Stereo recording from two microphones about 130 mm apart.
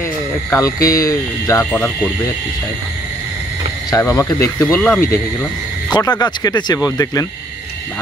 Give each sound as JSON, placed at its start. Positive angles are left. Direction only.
{"t": 0.5, "sound": "speech", "side_deg": 25}
{"t": 3.9, "sound": "speech", "side_deg": 25}
{"t": 4.7, "sound": "speech", "side_deg": 15}
{"t": 5.9, "sound": "speech", "side_deg": 30}